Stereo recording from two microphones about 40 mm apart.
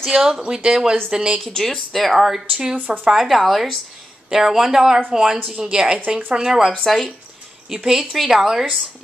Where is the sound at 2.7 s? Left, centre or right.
Right.